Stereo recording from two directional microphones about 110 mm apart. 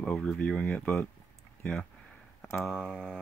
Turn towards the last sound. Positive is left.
turn(degrees=-5)  # may be behind; listen again after turning